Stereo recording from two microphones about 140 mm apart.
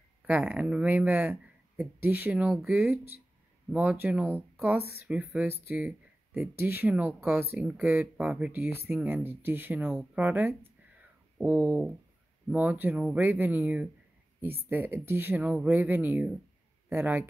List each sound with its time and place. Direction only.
0.3 s speech: 10° right (ahead or behind)
3.7 s speech: 15° right (ahead or behind)